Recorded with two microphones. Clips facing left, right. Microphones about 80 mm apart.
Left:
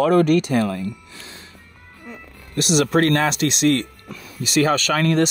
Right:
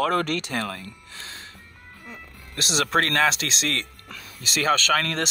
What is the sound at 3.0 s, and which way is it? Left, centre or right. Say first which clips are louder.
Speech: left 1 dB; centre.